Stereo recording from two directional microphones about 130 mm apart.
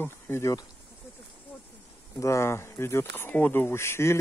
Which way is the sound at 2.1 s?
25° left (ahead or behind).